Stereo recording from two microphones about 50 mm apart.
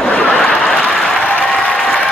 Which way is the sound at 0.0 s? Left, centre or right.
Left.